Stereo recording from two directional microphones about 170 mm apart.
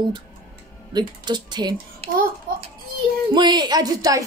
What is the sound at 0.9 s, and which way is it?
A woman's voice, 25° right (ahead or behind).